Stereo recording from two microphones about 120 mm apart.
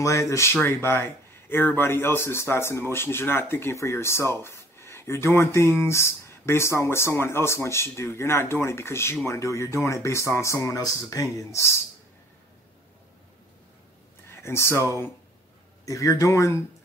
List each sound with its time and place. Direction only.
0.0 s speech: 25° left (ahead or behind)
14.3 s speech: 20° left (ahead or behind)